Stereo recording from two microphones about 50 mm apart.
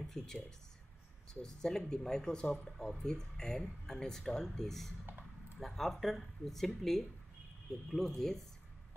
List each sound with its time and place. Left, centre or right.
0.2 s speech: centre